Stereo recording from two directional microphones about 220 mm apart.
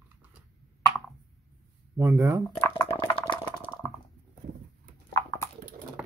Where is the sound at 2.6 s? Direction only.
15° left (ahead or behind).